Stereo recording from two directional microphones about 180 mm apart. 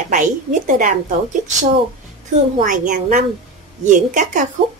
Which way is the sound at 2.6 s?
45° right (ahead or behind).